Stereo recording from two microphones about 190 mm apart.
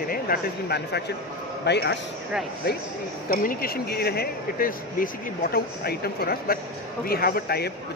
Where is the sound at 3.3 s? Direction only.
50° left (ahead or behind).